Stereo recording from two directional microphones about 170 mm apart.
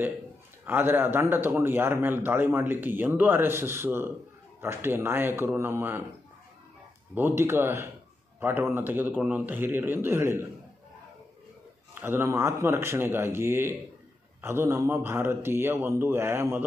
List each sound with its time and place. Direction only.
0.7 s a man's voice: 10° right (ahead or behind)
7.2 s a man's voice: 15° right (ahead or behind)
11.9 s a man's voice: 15° right (ahead or behind)